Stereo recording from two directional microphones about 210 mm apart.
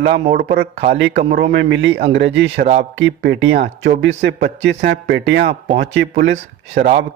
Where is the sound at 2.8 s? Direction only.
60° right (ahead or behind).